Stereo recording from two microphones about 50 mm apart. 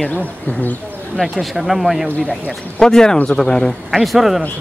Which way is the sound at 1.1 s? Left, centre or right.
Centre.